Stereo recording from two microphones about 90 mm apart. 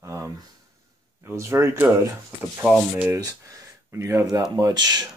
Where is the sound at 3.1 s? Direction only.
35° right (ahead or behind).